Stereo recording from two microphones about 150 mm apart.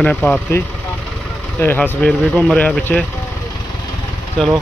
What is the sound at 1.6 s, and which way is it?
Speech, 15° left (ahead or behind).